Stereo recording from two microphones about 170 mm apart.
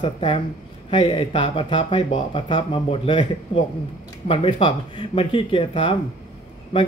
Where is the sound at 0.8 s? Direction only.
30° left (ahead or behind).